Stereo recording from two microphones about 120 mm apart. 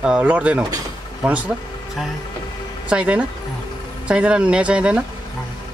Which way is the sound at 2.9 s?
10° right (ahead or behind).